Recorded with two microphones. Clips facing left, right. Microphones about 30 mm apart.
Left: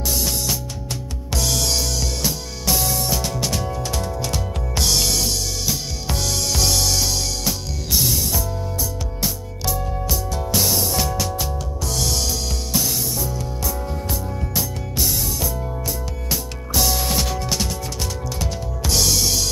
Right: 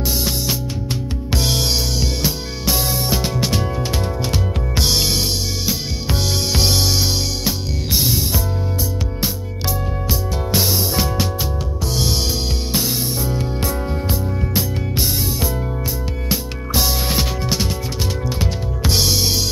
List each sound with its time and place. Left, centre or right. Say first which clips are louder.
1.3 s music: right 2 dB; right
10.3 s music: right 2 dB; right
12.7 s music: right 1 dB; right